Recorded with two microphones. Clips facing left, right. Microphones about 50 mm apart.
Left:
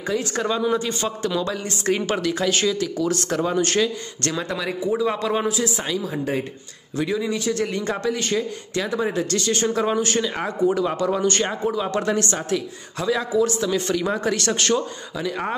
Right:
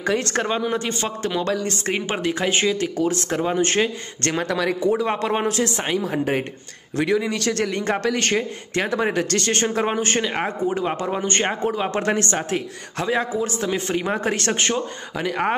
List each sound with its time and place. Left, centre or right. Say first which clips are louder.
0.0 s a man's voice: right 2 dB; right
0.7 s a man's voice: even; right
1.5 s a man's voice: right 4 dB; right
2.0 s a man's voice: even; right
4.5 s speech: right 4 dB; right
4.8 s a man's voice: left 1 dB; right
5.5 s speech: right 2 dB; right
7.0 s a man's voice: right 2 dB; right
9.8 s a man's voice: even; right
11.6 s a man's voice: right 1 dB; right
15.1 s speech: right 4 dB; right